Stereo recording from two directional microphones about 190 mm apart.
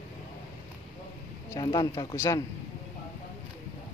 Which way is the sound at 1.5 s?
20° left (ahead or behind).